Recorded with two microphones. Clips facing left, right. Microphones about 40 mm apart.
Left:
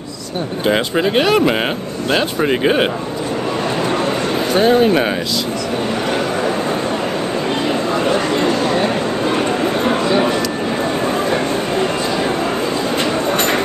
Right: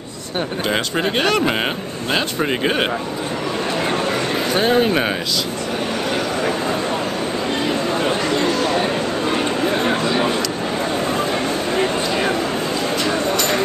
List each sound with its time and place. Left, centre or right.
0.7 s speech: centre
4.5 s speech: centre
8.4 s chatter: left
13.3 s a sound: left